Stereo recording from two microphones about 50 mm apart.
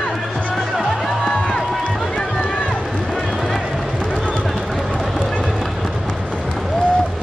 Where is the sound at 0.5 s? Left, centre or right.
Centre.